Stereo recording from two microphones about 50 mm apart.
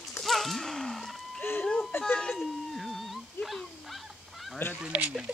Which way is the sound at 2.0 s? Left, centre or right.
Left.